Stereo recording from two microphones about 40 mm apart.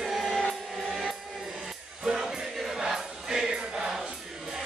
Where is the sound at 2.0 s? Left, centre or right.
Centre.